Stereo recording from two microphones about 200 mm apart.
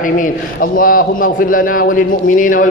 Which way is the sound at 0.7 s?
45° left (ahead or behind).